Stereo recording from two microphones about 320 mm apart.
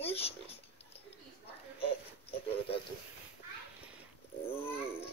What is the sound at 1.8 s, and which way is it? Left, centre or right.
Speech, centre.